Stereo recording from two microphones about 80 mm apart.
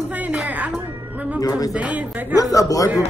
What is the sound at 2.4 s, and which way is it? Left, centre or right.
Speech, left.